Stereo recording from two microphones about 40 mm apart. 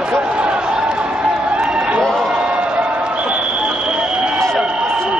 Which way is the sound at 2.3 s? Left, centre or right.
Right.